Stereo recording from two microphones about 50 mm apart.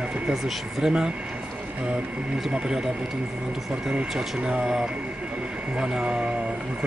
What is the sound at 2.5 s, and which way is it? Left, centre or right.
Speech, centre.